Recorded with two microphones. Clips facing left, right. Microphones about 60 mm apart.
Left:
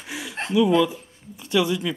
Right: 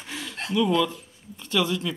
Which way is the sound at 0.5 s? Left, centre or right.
Centre.